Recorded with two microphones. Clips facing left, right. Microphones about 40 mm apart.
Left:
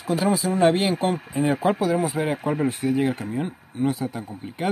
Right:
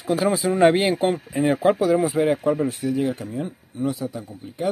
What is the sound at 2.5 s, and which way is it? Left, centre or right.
Speech, left.